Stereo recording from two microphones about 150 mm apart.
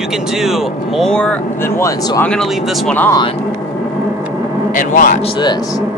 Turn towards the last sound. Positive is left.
turn(degrees=60)  # may be behind; listen again after turning